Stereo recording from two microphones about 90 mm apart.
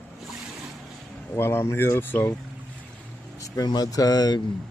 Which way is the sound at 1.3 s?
30° left (ahead or behind).